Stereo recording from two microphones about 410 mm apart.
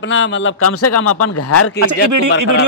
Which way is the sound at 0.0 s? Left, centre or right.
Left.